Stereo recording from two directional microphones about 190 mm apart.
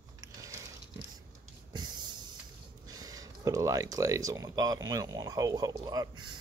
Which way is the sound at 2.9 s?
20° right (ahead or behind).